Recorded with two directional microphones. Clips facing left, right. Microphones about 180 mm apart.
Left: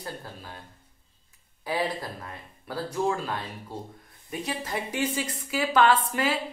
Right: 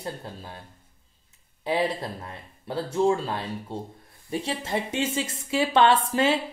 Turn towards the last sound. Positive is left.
turn(degrees=-25)  # may be behind; listen again after turning